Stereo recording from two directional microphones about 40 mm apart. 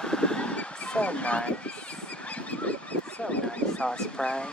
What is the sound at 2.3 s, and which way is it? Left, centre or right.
Goose, left.